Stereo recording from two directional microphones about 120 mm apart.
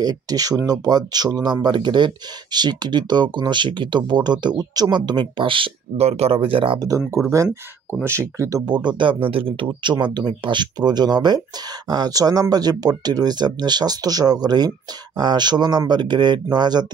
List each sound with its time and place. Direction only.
0.0 s speech: 35° right (ahead or behind)
7.3 s speech: 25° right (ahead or behind)